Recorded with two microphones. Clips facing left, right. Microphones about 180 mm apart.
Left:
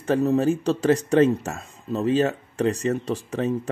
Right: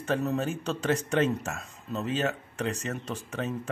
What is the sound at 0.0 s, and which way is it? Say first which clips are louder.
Speech: left 8 dB; 30° left (ahead or behind).